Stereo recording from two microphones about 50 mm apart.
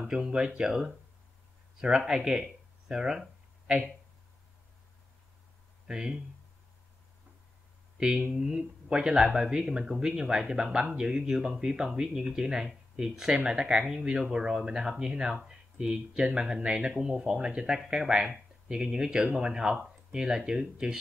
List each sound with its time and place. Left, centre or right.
0.1 s speech: centre
5.9 s speech: centre
8.0 s speech: centre